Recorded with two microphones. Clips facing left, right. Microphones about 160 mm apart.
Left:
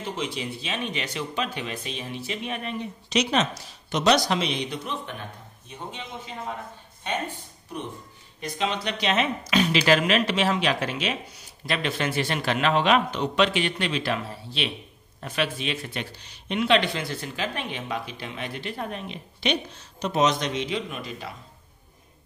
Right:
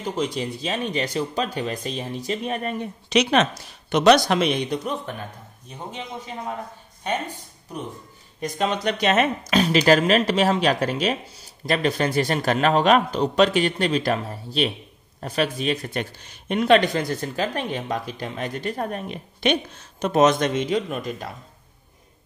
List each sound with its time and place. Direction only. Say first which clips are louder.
0.0 s speech: right 5 dB; 40° right (ahead or behind)
3.1 s speech: right 5 dB; 65° right (ahead or behind); by 5.0 s 45° right (ahead or behind)
7.1 s speech: right 3 dB; 10° right (ahead or behind)
8.4 s speech: right 4 dB; 45° right (ahead or behind)